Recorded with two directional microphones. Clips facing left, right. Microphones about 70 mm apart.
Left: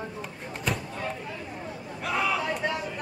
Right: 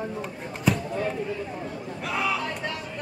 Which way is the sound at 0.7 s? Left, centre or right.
Centre.